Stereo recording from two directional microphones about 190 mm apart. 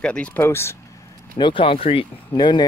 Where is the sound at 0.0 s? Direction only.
5° left (ahead or behind).